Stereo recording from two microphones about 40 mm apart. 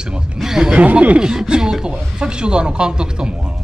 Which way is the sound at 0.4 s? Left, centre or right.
Centre.